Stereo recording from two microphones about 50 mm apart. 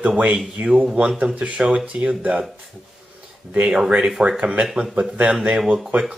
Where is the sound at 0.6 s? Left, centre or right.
Right.